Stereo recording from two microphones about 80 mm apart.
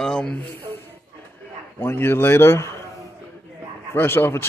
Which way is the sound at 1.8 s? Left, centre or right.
Left.